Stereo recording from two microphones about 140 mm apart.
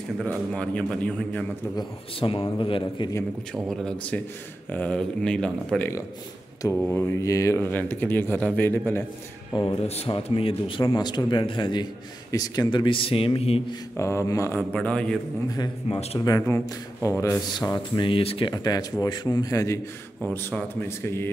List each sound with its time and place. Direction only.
0.2 s speech: 10° left (ahead or behind)
1.8 s speech: 40° left (ahead or behind)
3.5 s speech: 5° left (ahead or behind)
6.9 s speech: 15° left (ahead or behind)
9.7 s speech: 45° left (ahead or behind)
13.9 s speech: 20° left (ahead or behind)
14.7 s speech: 10° left (ahead or behind)
15.4 s speech: 25° left (ahead or behind)
15.9 s speech: 45° left (ahead or behind)
16.3 s speech: 20° left (ahead or behind); by 18.5 s 40° left (ahead or behind)
18.5 s speech: 25° left (ahead or behind)